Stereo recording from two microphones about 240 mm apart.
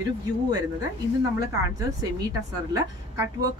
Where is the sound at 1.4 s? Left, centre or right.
Centre.